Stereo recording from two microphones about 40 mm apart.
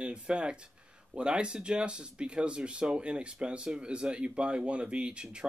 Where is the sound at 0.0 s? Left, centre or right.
Right.